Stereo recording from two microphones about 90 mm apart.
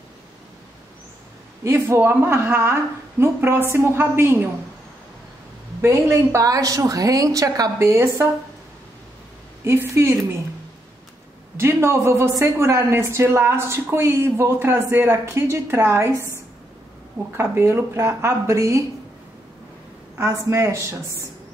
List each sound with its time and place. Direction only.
1.6 s a woman's voice: 30° right (ahead or behind)
5.8 s a woman's voice: 30° right (ahead or behind)
7.8 s a woman's voice: 30° right (ahead or behind)
9.7 s speech: 25° right (ahead or behind)
11.6 s speech: 30° right (ahead or behind)
17.4 s a woman's voice: 25° right (ahead or behind)
20.2 s a woman's voice: 30° right (ahead or behind)